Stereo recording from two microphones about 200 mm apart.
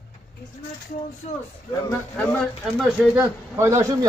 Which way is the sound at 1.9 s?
10° left (ahead or behind).